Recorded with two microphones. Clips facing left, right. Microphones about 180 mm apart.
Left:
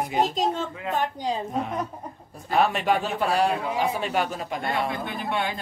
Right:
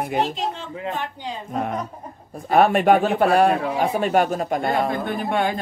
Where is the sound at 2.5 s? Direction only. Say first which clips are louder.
Right 7 dB; 55° right (ahead or behind).